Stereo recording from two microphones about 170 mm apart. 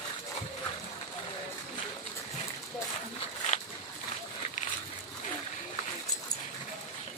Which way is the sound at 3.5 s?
45° left (ahead or behind).